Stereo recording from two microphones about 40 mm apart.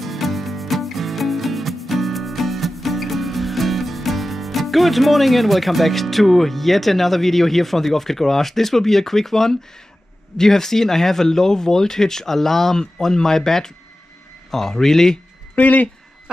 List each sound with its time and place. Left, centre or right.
0.0 s music: centre
10.3 s speech: centre
15.5 s speech: left